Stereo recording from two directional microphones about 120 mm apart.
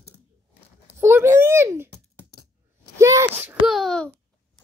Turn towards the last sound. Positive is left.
turn(degrees=0)  # may be behind; listen again after turning